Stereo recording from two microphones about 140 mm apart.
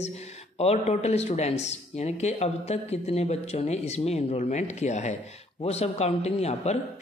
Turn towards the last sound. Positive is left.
turn(degrees=50)  # may be behind; listen again after turning